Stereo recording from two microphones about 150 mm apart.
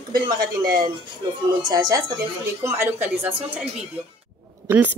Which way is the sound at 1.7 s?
25° right (ahead or behind).